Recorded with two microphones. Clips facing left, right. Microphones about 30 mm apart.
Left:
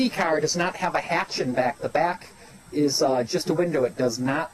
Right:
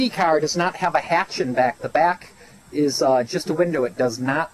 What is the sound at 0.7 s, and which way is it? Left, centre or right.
Speech, right.